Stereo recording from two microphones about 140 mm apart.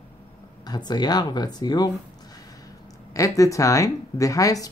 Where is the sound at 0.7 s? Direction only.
30° left (ahead or behind).